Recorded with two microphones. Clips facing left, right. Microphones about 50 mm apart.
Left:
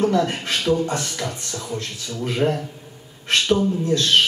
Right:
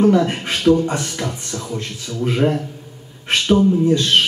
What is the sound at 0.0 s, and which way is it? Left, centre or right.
Speech, centre.